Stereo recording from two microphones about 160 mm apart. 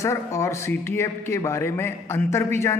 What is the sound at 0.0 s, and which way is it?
A man's voice, 20° left (ahead or behind).